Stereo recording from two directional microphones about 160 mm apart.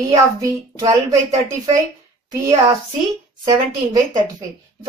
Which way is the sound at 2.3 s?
25° right (ahead or behind).